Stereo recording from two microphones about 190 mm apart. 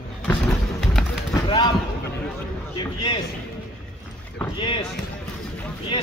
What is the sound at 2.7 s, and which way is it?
Speech, 25° left (ahead or behind).